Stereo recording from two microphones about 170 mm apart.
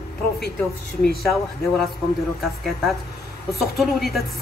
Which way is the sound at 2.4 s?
Centre (ahead or behind).